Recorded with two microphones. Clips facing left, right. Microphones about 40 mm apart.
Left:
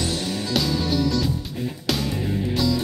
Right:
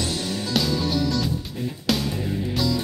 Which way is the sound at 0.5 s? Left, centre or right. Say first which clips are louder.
Even; centre.